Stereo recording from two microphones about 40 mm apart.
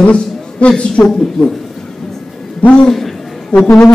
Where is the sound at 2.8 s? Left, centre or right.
Centre.